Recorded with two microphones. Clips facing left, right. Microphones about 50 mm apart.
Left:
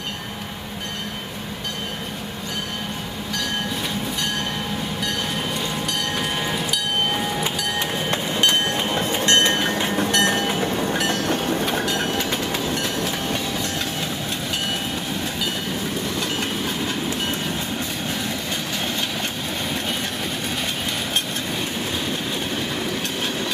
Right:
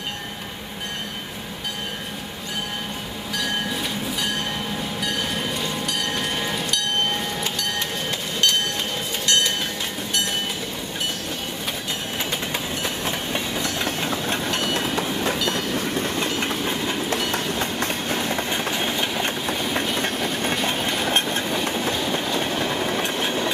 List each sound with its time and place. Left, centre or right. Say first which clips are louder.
5.0 s train: right 1 dB; centre
8.4 s train: left 1 dB; left
10.1 s train: left 3 dB; left
16.2 s train: right 1 dB; right
18.5 s train: right 2 dB; centre
20.6 s train: right 3 dB; right